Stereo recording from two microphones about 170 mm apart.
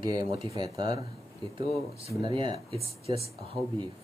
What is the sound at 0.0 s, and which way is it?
Speech, 25° right (ahead or behind).